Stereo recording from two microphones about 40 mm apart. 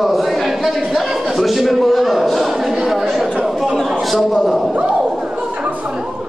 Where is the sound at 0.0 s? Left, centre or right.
Centre.